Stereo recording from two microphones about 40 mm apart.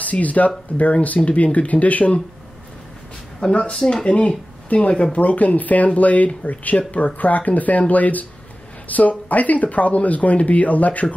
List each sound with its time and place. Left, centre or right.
0.0 s speech: left
3.4 s speech: left
5.2 s speech: left